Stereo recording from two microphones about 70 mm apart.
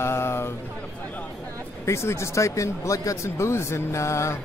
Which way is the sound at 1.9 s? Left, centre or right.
Left.